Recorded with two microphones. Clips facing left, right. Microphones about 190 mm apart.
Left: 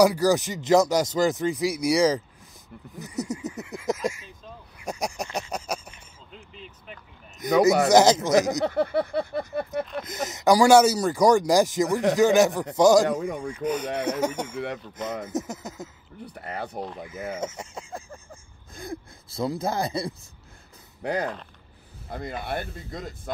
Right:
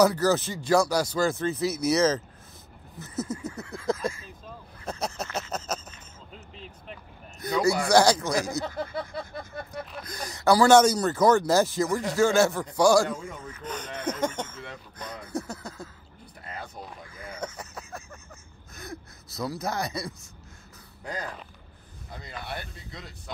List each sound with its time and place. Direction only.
0.0 s speech: 15° left (ahead or behind)
4.7 s a sound: 15° left (ahead or behind)
6.5 s vehicle: centre (ahead or behind)
7.3 s speech: 20° left (ahead or behind)
8.6 s a sound: 65° left (ahead or behind)
10.0 s speech: 20° left (ahead or behind)
15.0 s speech: 25° left (ahead or behind)
16.3 s a sound: 65° left (ahead or behind)
17.0 s speech: 20° left (ahead or behind)
18.8 s gasp: 25° left (ahead or behind)
19.6 s speech: 30° left (ahead or behind)
21.0 s speech: 65° left (ahead or behind)
22.1 s speech: 55° left (ahead or behind)